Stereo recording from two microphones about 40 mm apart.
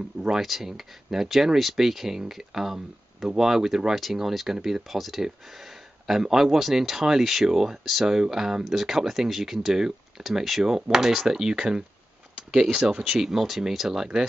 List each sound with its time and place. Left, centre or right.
0.4 s speech: centre